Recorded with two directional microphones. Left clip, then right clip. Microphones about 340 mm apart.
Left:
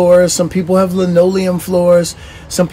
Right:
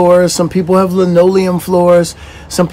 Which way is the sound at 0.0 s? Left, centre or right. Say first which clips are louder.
Even; centre.